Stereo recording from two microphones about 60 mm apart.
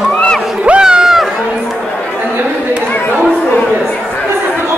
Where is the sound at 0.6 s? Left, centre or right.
Centre.